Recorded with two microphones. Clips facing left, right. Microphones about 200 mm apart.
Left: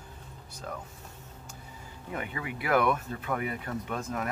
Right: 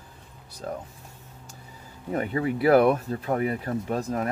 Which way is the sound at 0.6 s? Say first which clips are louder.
Right 6 dB; 35° right (ahead or behind).